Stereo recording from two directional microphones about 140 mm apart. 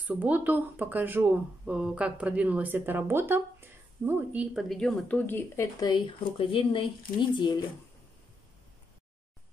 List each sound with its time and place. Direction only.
0.0 s speech: 10° right (ahead or behind)
4.6 s speech: 5° left (ahead or behind)
5.8 s speech: 30° left (ahead or behind)